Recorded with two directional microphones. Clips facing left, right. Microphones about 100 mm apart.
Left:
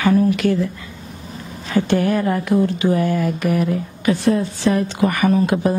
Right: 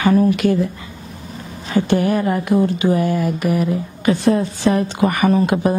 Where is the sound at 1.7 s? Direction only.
15° right (ahead or behind).